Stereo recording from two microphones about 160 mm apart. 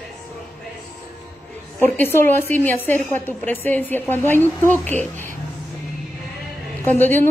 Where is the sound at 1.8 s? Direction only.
15° left (ahead or behind).